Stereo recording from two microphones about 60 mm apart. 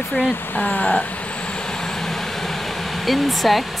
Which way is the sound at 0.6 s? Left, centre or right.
Left.